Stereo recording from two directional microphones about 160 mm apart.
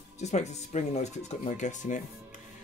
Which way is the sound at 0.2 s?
45° left (ahead or behind).